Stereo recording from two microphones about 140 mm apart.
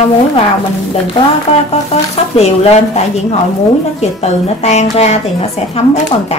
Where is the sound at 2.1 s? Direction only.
50° left (ahead or behind).